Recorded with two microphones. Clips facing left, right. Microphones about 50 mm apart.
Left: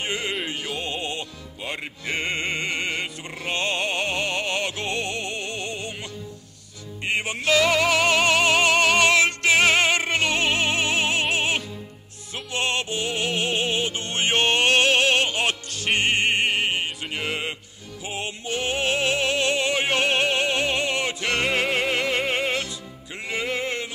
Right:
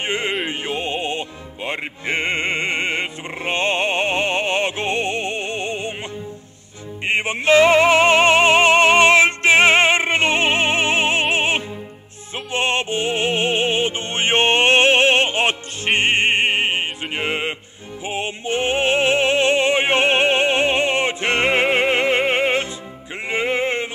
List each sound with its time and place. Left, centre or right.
0.0 s music: right
7.1 s music: right